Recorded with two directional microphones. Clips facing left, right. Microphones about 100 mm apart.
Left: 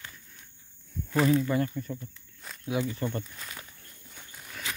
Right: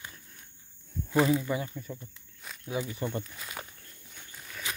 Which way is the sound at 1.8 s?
5° right (ahead or behind).